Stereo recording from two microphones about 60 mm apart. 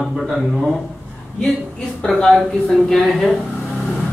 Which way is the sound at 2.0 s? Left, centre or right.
Centre.